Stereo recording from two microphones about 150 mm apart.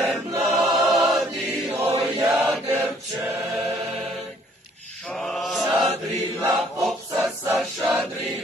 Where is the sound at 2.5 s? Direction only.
Centre (ahead or behind).